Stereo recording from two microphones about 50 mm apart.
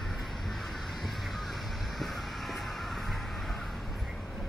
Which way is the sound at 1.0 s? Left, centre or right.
Centre.